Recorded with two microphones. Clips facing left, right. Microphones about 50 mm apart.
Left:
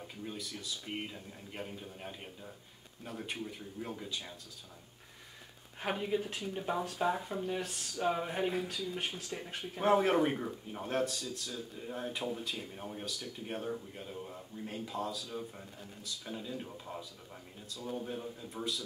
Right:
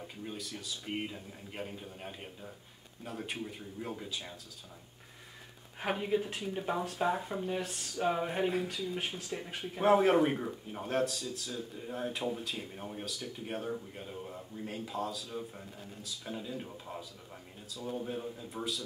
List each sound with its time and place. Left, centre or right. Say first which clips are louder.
0.0 s speech: right 1 dB; centre
5.8 s speech: right 2 dB; centre